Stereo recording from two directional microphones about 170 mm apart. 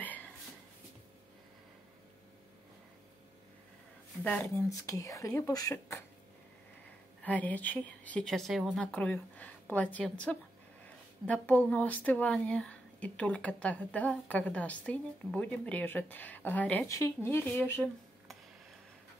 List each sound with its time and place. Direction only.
0.0 s a sound: 10° left (ahead or behind)
4.2 s speech: 10° left (ahead or behind)
7.2 s speech: 10° left (ahead or behind)